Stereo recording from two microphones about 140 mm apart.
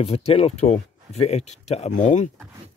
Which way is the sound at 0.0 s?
45° left (ahead or behind).